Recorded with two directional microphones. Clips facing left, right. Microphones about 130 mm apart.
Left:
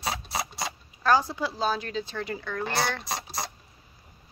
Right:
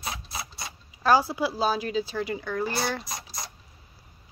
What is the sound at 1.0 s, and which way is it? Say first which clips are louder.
Speech: right 2 dB; 10° right (ahead or behind).